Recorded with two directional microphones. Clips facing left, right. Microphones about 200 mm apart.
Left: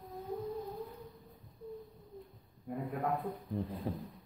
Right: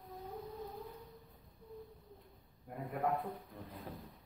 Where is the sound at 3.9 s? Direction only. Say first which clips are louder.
Left 8 dB; 30° left (ahead or behind).